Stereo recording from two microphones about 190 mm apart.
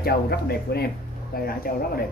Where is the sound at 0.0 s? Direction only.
55° left (ahead or behind).